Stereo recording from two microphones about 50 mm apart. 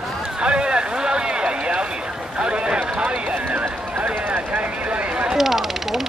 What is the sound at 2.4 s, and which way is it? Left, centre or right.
Clip-clop, centre.